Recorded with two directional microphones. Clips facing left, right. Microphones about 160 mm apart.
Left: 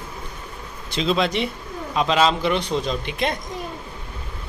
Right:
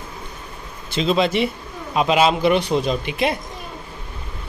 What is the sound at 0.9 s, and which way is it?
Speech, centre (ahead or behind).